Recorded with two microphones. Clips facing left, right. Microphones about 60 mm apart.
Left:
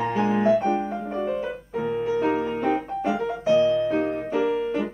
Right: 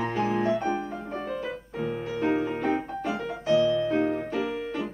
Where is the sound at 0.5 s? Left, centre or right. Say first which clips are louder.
Left 6 dB; centre.